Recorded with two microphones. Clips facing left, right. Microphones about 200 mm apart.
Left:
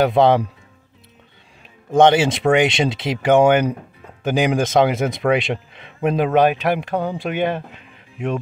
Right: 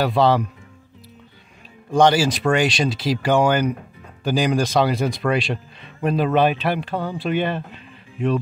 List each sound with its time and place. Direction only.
0.0 s speech: 20° left (ahead or behind)
1.9 s speech: 25° left (ahead or behind)